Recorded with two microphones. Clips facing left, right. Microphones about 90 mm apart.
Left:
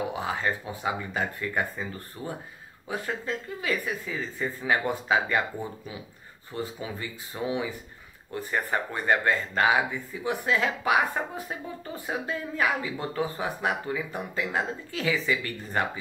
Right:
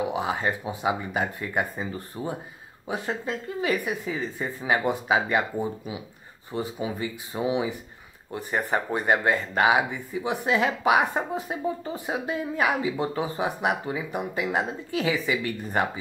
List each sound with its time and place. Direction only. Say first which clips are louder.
0.1 s speech: right 3 dB; 20° right (ahead or behind)